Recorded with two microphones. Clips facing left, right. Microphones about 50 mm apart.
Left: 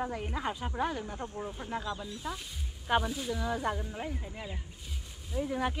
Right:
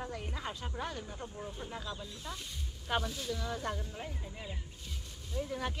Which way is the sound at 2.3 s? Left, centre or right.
Centre.